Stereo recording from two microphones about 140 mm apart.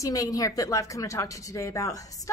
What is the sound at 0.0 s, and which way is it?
A woman's voice, 25° left (ahead or behind).